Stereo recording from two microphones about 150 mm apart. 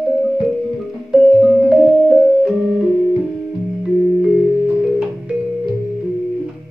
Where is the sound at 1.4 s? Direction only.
5° right (ahead or behind).